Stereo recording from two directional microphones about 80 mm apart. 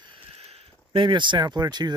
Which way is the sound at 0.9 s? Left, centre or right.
Right.